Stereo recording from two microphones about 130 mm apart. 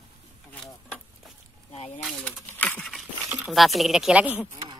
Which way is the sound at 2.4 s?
10° left (ahead or behind).